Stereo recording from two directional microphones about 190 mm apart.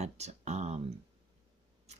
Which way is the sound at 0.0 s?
35° right (ahead or behind).